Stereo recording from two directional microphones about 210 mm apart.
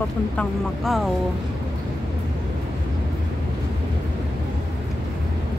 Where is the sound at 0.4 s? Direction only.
Centre (ahead or behind).